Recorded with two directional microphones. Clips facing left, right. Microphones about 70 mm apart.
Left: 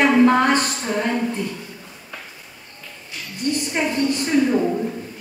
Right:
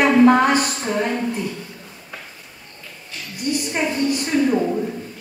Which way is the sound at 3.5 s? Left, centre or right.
Centre.